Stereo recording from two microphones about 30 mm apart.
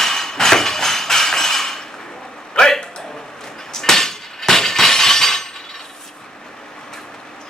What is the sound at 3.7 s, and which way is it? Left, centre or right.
Glass, centre.